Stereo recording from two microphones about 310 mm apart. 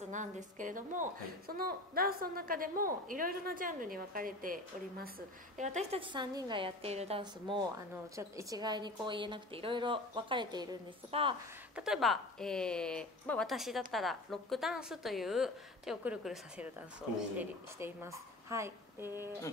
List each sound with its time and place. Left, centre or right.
0.1 s a woman's voice: right
11.7 s a woman's voice: centre